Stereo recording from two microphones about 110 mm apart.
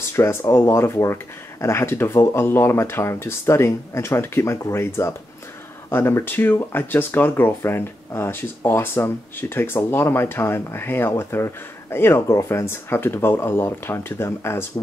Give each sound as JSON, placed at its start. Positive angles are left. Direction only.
{"t": 0.1, "sound": "speech", "side_deg": 25}